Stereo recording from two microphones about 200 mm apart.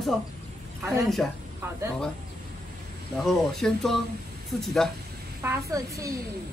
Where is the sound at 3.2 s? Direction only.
Centre (ahead or behind).